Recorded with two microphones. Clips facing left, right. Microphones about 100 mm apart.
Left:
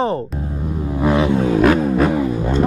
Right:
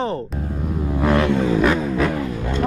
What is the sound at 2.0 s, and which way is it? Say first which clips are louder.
Music: left 5 dB; 20° left (ahead or behind).